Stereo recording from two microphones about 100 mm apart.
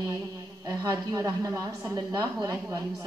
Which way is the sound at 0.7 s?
40° right (ahead or behind).